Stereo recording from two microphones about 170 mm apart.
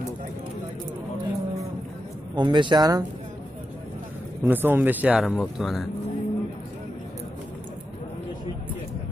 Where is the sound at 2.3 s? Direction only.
25° right (ahead or behind).